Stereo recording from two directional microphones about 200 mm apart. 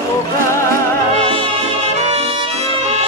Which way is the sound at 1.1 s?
30° right (ahead or behind).